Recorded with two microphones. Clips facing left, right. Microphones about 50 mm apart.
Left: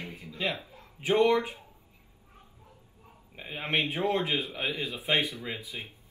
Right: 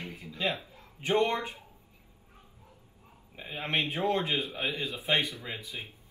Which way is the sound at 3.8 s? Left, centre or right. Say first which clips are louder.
Left 1 dB; left.